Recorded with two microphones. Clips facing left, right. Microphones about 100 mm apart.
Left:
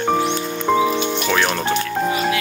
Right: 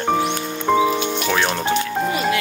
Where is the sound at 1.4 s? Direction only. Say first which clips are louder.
Left 1 dB; 15° right (ahead or behind).